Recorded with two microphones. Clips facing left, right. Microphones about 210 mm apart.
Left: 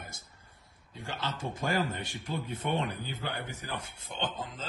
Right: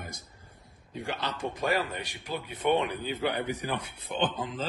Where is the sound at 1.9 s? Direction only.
85° right.